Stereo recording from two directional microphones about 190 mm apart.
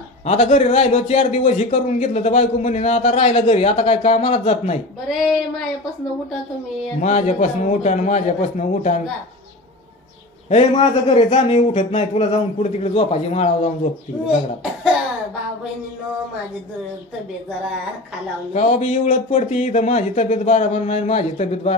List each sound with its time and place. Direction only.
0.2 s a man's voice: 35° left (ahead or behind)
5.2 s a sound: centre (ahead or behind)
7.0 s a man's voice: 40° left (ahead or behind)
10.5 s a man's voice: 30° left (ahead or behind)
18.5 s a man's voice: 35° left (ahead or behind)